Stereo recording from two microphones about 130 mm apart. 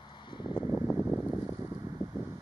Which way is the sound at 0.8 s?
5° left (ahead or behind).